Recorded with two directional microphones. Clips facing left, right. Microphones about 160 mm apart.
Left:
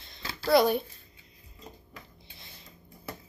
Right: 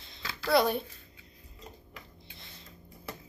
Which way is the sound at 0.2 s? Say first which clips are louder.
Left 1 dB; 30° left (ahead or behind).